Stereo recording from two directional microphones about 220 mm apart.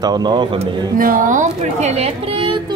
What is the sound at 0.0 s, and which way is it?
Speech, 20° right (ahead or behind).